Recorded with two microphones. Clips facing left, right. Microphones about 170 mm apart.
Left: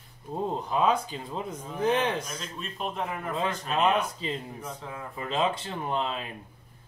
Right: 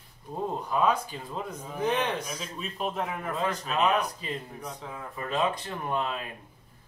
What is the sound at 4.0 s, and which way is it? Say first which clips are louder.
Speech: left 1 dB; 25° left (ahead or behind).